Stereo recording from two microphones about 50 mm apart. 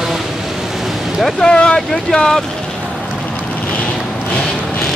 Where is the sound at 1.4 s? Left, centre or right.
Centre.